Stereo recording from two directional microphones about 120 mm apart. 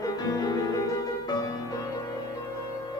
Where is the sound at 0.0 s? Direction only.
35° left (ahead or behind).